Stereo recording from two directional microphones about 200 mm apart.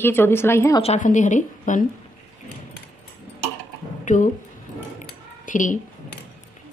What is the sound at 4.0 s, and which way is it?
Speech, 40° left (ahead or behind).